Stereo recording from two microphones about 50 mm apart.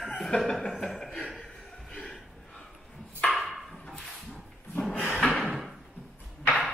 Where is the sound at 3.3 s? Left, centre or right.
Centre.